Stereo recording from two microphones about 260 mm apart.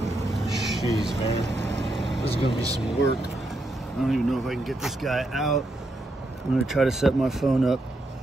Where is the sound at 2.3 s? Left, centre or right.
Left.